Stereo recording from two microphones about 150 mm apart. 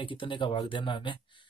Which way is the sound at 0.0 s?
35° left (ahead or behind).